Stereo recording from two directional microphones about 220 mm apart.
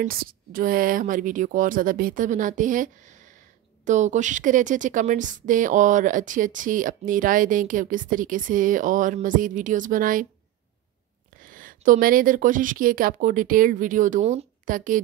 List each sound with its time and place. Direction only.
0.0 s a woman's voice: 40° right (ahead or behind)
11.4 s a woman's voice: 40° right (ahead or behind)